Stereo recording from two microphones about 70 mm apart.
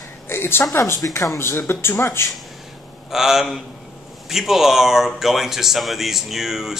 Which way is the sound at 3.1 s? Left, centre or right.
Centre.